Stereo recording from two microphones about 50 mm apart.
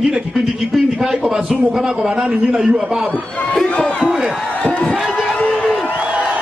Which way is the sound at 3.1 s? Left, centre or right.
Left.